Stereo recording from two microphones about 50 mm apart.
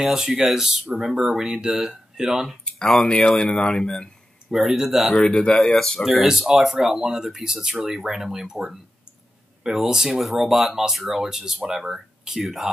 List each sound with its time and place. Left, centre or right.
0.0 s speech: centre
3.1 s speech: centre
4.5 s speech: centre
5.3 s speech: centre
6.0 s speech: centre